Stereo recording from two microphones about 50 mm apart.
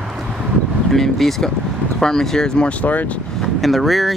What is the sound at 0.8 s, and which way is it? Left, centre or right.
Speech, centre.